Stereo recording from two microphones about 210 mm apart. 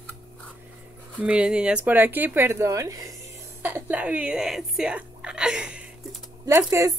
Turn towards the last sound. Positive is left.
turn(degrees=-15)  # may be behind; listen again after turning